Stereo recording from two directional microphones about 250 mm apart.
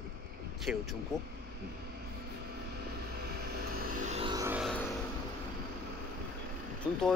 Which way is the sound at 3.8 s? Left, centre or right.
Right.